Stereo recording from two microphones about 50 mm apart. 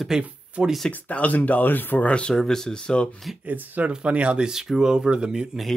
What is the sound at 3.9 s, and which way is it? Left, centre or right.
Speech, right.